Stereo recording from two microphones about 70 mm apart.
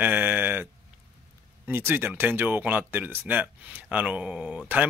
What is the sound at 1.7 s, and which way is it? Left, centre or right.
Speech, right.